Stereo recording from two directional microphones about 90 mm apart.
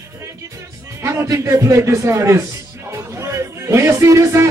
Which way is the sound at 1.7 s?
35° right (ahead or behind).